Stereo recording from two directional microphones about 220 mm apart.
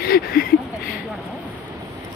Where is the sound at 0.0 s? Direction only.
45° left (ahead or behind).